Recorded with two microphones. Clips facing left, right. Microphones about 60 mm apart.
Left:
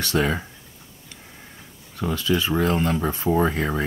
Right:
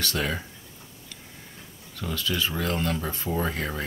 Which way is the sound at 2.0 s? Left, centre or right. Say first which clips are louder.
Left 6 dB; left.